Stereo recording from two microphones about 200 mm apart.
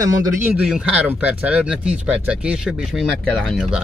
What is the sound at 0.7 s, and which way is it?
Speech, 5° right (ahead or behind).